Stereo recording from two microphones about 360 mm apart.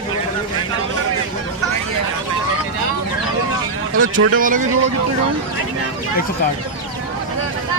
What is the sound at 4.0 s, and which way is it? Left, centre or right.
Speech, right.